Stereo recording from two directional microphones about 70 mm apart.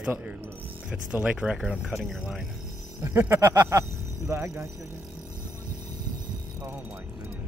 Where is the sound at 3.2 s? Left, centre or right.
Right.